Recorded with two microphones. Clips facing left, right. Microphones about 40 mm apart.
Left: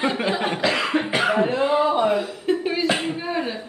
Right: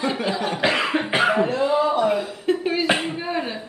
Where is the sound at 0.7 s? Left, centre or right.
Centre.